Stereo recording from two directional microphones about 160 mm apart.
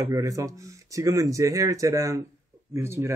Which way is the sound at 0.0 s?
20° right (ahead or behind).